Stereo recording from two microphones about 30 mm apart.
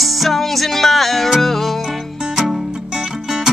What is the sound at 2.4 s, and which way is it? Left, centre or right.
Music, centre.